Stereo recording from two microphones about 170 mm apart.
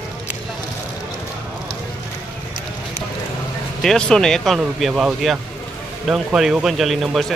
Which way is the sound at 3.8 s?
5° left (ahead or behind).